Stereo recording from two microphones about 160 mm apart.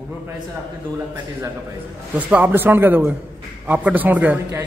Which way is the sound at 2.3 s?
10° right (ahead or behind).